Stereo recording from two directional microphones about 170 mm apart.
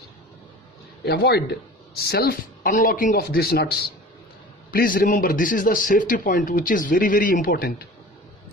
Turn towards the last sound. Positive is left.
turn(degrees=65)  # may be behind; listen again after turning